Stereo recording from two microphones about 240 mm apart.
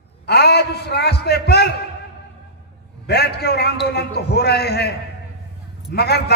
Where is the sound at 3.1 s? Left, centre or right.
Left.